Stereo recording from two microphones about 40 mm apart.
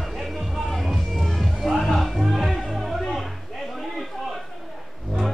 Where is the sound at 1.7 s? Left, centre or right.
Centre.